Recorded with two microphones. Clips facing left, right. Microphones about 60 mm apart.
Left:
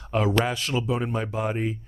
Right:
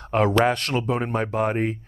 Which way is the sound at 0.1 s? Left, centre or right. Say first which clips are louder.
Right 4 dB; right.